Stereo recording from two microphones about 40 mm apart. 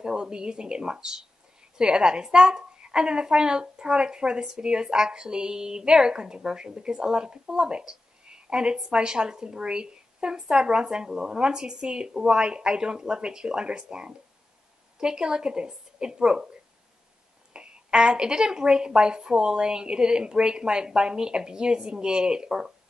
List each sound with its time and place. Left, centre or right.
0.0 s a woman's voice: right
17.5 s a woman's voice: right